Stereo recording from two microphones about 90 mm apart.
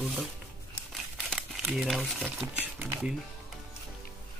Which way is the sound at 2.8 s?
20° right (ahead or behind).